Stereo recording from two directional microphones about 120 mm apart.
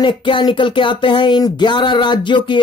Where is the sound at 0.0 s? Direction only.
40° left (ahead or behind).